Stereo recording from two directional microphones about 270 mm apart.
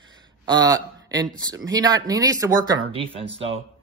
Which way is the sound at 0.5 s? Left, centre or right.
Centre.